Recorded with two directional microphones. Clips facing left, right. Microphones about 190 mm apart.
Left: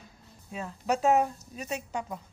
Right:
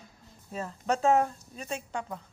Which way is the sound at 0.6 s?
5° left (ahead or behind).